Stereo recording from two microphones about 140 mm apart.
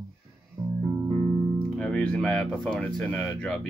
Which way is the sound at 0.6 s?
15° right (ahead or behind).